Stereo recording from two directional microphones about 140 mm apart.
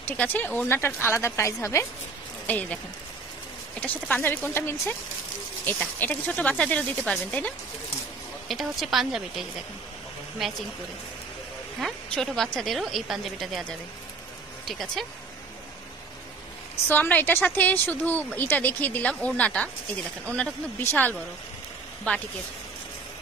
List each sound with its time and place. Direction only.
0.0 s a woman's voice: 10° left (ahead or behind)
3.8 s a woman's voice: 10° left (ahead or behind)
11.8 s a woman's voice: centre (ahead or behind)
16.8 s a woman's voice: 15° left (ahead or behind)
20.8 s a woman's voice: 15° left (ahead or behind)